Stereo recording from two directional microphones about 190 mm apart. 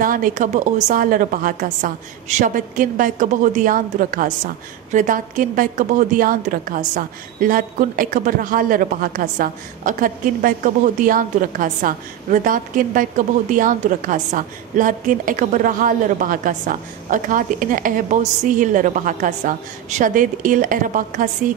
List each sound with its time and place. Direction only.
0.0 s a woman's voice: 45° right (ahead or behind)